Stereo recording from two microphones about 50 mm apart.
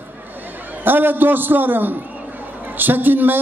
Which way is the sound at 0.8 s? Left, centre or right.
Right.